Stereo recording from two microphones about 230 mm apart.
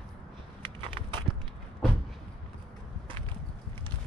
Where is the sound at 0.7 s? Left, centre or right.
Right.